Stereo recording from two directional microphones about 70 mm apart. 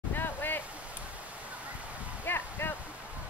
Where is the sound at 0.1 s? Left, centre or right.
Left.